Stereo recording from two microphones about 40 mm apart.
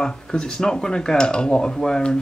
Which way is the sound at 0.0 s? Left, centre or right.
Left.